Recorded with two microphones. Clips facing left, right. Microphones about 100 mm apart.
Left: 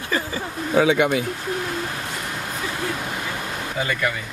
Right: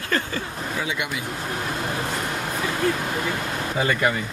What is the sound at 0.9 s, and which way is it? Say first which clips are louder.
Speech: left 10 dB; 50° left (ahead or behind).